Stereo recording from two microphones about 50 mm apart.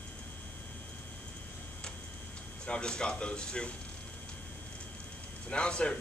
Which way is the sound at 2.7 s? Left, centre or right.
Centre.